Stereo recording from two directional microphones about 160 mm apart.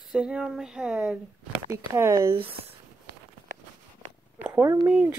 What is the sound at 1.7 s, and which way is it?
Speech, 20° right (ahead or behind).